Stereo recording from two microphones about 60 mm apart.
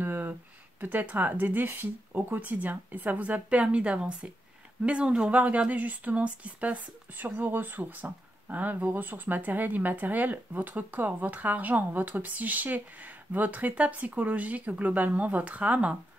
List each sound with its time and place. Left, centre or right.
0.0 s speech: right